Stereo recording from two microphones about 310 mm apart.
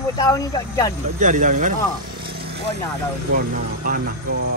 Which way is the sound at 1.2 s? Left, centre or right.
Right.